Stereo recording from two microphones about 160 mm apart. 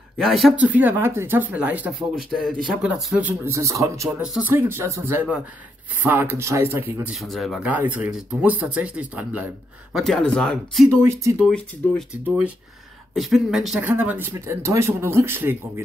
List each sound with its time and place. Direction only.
0.2 s speech: centre (ahead or behind); by 4.1 s 20° right (ahead or behind)
4.2 s speech: 5° right (ahead or behind)
7.6 s speech: 10° right (ahead or behind)
9.9 s speech: centre (ahead or behind)
10.9 s speech: 15° right (ahead or behind)
11.4 s speech: 5° left (ahead or behind)
13.1 s speech: centre (ahead or behind)